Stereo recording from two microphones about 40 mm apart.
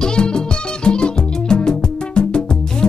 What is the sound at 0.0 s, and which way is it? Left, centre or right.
Music, left.